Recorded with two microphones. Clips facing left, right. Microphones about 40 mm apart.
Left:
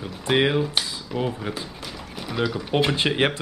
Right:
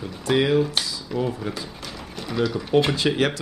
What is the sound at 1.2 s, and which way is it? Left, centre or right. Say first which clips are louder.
Speech: even; centre.